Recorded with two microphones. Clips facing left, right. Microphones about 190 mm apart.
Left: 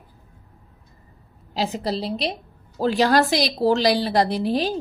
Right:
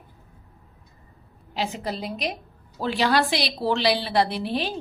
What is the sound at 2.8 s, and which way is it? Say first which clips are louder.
A woman's voice: left 4 dB; 45° left (ahead or behind).